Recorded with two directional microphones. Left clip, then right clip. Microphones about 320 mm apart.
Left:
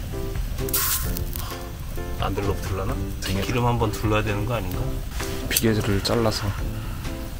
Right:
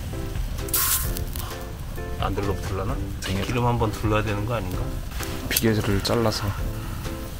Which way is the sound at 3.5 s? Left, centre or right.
Left.